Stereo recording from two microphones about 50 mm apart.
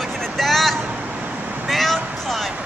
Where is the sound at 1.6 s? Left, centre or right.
Centre.